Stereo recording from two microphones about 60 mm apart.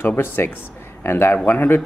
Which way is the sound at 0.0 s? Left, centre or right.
Left.